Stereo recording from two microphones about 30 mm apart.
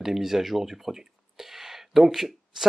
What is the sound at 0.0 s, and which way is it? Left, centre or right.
Speech, centre.